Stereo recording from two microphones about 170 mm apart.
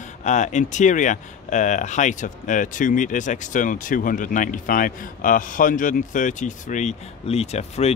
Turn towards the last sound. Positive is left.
turn(degrees=40)  # may be behind; listen again after turning